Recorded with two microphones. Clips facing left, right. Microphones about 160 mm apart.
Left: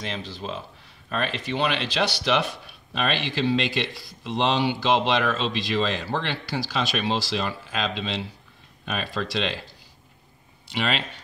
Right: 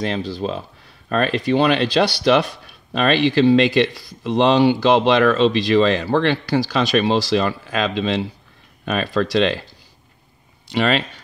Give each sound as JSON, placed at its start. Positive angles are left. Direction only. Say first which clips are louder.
{"t": 0.0, "sound": "speech", "louder": "right 10 dB", "side_deg": -40}
{"t": 4.4, "sound": "speech", "louder": "right 9 dB", "side_deg": -55}
{"t": 10.8, "sound": "speech", "louder": "right 8 dB", "side_deg": -45}